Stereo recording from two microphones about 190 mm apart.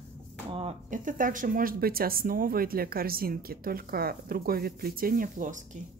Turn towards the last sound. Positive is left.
turn(degrees=-45)  # may be behind; listen again after turning